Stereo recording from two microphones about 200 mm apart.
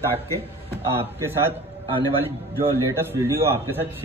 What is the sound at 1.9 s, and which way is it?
Speech, 30° right (ahead or behind).